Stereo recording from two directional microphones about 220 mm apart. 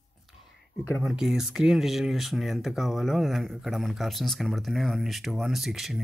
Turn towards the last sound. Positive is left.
turn(degrees=0)  # may be behind; listen again after turning